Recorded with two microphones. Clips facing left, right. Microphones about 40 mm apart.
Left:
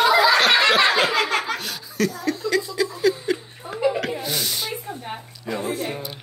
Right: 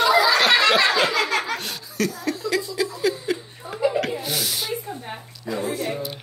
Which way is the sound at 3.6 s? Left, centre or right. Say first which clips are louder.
Left 2 dB; left.